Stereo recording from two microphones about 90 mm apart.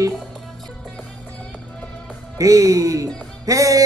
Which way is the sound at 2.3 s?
40° right (ahead or behind).